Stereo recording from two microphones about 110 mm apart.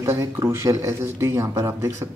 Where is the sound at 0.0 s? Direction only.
25° right (ahead or behind).